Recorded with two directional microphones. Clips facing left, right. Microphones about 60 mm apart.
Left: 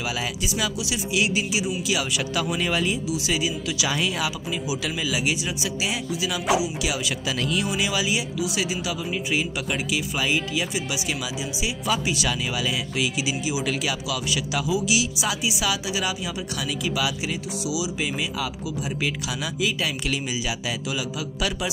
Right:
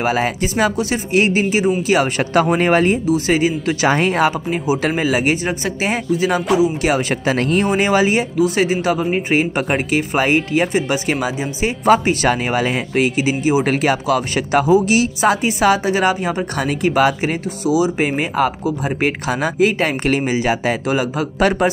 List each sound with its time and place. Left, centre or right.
0.0 s speech: right